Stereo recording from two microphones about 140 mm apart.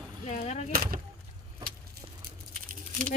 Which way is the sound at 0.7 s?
90° right.